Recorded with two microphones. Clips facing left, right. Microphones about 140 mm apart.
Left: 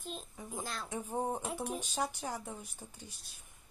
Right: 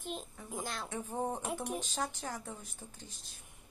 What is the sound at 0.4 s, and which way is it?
Speech, 15° left (ahead or behind).